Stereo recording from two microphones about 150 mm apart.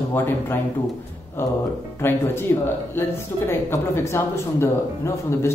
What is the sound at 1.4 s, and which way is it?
A man's voice, 15° left (ahead or behind).